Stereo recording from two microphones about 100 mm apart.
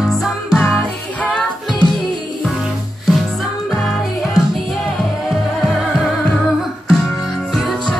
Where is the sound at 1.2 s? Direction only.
10° left (ahead or behind).